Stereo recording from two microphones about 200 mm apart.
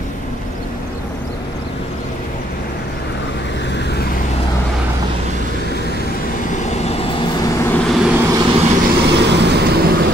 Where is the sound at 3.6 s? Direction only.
60° left (ahead or behind).